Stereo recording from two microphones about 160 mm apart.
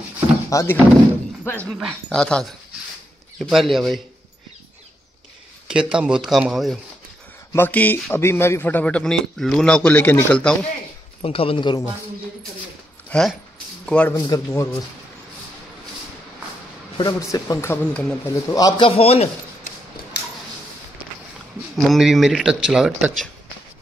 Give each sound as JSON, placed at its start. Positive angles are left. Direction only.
{"t": 0.5, "sound": "speech", "side_deg": 20}
{"t": 1.7, "sound": "speech", "side_deg": 0}
{"t": 5.7, "sound": "speech", "side_deg": -5}
{"t": 7.5, "sound": "a man's voice", "side_deg": 10}
{"t": 11.2, "sound": "speech", "side_deg": 35}
{"t": 13.1, "sound": "a man's voice", "side_deg": 0}
{"t": 14.1, "sound": "a man's voice", "side_deg": 20}
{"t": 16.9, "sound": "a man's voice", "side_deg": 25}
{"t": 18.3, "sound": "a man's voice", "side_deg": 20}
{"t": 18.9, "sound": "speech", "side_deg": 40}
{"t": 20.1, "sound": "a sound", "side_deg": 90}
{"t": 21.7, "sound": "speech", "side_deg": 0}